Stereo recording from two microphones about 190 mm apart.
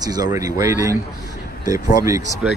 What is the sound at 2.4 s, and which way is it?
Speech, 5° right (ahead or behind).